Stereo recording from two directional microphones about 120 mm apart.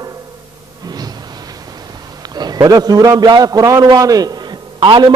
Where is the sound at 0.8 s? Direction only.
35° right (ahead or behind).